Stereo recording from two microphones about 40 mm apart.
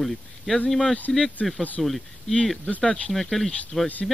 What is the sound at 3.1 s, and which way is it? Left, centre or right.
Speech, centre.